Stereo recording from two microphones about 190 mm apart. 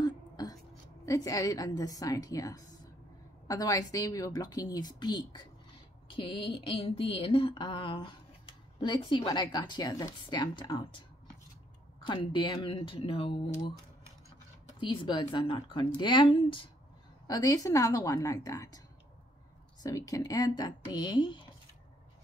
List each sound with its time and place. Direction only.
0.0 s a sound: 20° left (ahead or behind)
1.0 s a woman's voice: 20° left (ahead or behind)
12.0 s a woman's voice: 25° left (ahead or behind)
14.8 s a woman's voice: 25° left (ahead or behind)
19.8 s a woman's voice: 20° left (ahead or behind)